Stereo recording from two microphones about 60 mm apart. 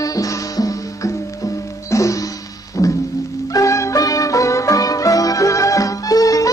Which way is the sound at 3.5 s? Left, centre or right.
Left.